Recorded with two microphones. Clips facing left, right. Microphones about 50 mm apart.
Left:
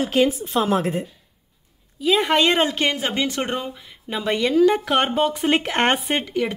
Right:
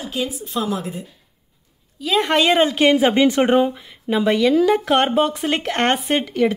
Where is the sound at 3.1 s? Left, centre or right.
Right.